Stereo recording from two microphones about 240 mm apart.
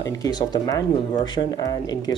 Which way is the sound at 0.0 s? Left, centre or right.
Centre.